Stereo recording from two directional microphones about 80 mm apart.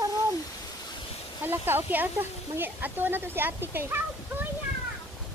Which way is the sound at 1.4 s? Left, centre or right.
Right.